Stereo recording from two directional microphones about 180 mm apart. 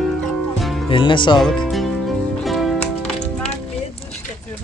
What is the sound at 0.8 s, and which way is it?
Speech, 25° left (ahead or behind).